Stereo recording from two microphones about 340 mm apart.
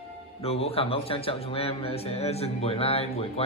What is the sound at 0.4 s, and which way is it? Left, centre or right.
A man's voice, centre.